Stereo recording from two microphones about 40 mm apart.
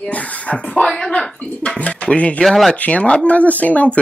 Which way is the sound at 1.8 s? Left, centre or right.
Left.